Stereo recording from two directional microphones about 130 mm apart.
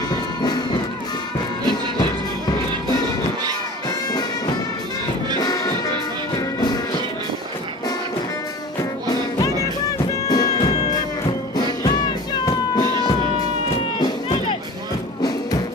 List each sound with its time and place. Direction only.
0.4 s music: 35° left (ahead or behind)
4.1 s music: 30° left (ahead or behind)
9.1 s music: 30° left (ahead or behind)
12.4 s music: 35° left (ahead or behind)